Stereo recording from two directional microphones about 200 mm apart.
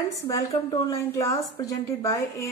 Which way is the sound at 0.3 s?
15° left (ahead or behind).